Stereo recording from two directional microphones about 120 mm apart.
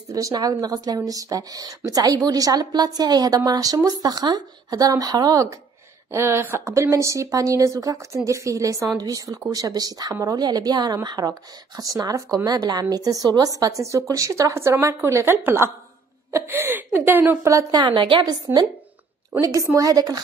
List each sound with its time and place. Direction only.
0.1 s a woman's voice: 30° right (ahead or behind)